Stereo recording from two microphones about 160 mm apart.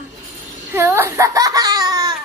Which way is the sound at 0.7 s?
15° right (ahead or behind).